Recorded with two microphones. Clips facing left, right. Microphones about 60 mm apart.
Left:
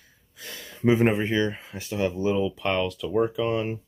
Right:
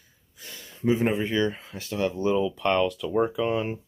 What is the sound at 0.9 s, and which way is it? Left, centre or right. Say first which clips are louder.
Speech: left 3 dB; left.